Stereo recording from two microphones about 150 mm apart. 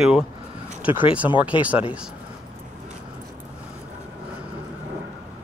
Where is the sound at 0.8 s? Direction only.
10° right (ahead or behind).